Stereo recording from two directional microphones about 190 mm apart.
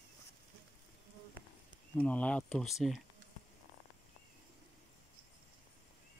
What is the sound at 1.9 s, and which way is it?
Speech, 5° left (ahead or behind).